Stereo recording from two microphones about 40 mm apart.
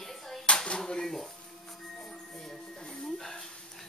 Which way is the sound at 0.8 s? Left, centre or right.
Centre.